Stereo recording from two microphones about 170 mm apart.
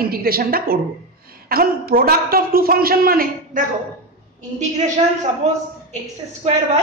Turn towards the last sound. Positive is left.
turn(degrees=-40)  # may be behind; listen again after turning